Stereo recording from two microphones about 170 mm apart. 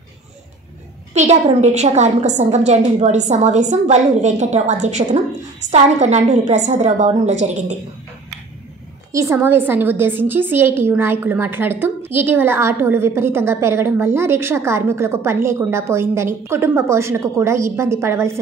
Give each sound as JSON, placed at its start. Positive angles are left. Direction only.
{"t": 1.1, "sound": "a woman's voice", "side_deg": -45}
{"t": 9.1, "sound": "a woman's voice", "side_deg": -15}